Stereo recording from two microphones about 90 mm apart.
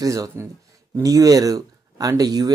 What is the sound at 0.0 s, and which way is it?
Speech, 40° right (ahead or behind).